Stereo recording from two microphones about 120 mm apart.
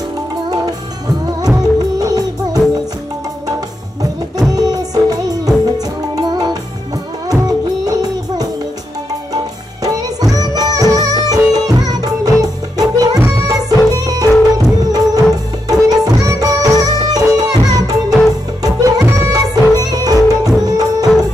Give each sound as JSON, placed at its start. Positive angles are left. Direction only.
{"t": 1.5, "sound": "music", "side_deg": -30}
{"t": 4.0, "sound": "music", "side_deg": -30}
{"t": 9.8, "sound": "music", "side_deg": -30}